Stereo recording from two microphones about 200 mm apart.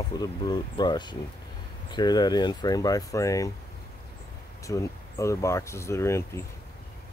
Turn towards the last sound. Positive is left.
turn(degrees=15)  # may be behind; listen again after turning